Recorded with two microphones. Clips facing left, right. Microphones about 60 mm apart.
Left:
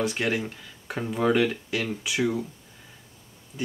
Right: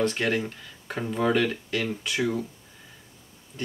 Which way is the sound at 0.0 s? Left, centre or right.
Centre.